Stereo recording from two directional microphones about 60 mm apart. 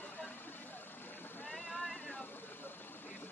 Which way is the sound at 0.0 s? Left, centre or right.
Left.